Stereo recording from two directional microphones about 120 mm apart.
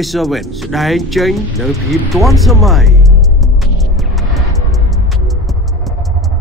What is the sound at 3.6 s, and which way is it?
Music, centre (ahead or behind).